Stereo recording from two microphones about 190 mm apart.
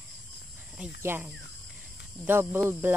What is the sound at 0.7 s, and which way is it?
Speech, 10° right (ahead or behind).